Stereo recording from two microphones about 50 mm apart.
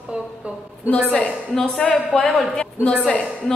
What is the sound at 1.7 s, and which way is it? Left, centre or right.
Speech, left.